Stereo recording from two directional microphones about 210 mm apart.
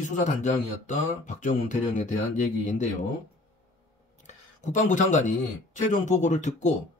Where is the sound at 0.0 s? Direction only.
35° left (ahead or behind).